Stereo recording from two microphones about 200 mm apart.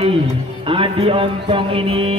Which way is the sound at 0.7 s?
25° right (ahead or behind).